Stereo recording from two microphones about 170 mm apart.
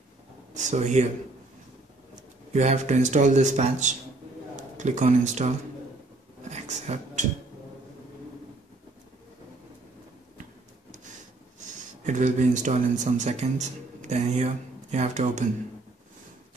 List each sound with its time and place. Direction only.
0.6 s speech: 45° right (ahead or behind)
2.5 s speech: 40° right (ahead or behind)
6.5 s a sound: 40° right (ahead or behind)
12.0 s speech: 45° right (ahead or behind)